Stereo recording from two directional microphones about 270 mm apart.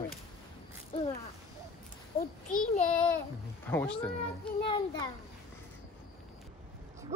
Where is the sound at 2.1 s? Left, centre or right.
Left.